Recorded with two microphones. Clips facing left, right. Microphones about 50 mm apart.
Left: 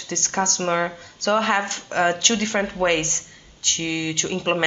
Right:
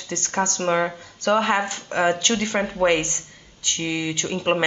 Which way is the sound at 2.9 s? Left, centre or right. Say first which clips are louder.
Right 1 dB; centre.